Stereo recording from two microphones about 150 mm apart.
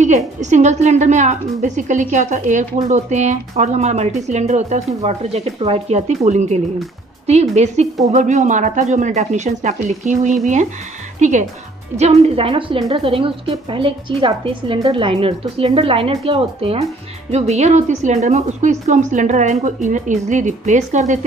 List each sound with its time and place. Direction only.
0.4 s a woman's voice: 50° right (ahead or behind)